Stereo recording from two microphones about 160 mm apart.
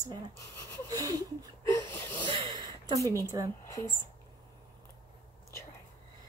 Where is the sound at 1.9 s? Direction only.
10° left (ahead or behind).